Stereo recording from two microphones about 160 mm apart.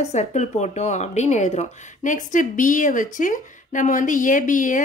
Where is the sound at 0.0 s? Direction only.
45° left (ahead or behind).